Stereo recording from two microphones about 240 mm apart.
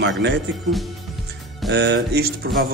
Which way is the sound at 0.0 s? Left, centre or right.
Right.